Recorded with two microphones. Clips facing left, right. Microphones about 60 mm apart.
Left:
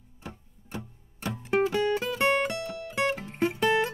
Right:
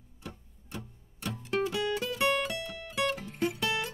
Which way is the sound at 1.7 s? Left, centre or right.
Left.